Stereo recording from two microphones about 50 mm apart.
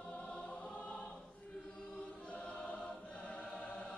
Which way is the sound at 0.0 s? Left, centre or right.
Left.